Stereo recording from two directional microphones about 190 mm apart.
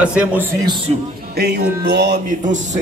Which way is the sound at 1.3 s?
60° right (ahead or behind).